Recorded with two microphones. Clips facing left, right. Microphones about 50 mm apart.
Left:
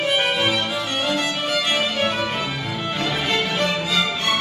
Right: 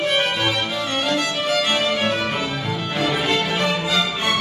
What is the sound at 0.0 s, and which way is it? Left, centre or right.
Music, centre.